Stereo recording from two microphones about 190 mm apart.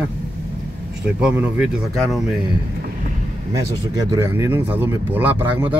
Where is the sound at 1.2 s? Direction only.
5° right (ahead or behind).